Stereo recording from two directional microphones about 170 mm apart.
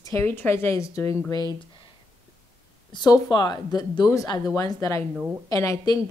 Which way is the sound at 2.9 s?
25° left (ahead or behind).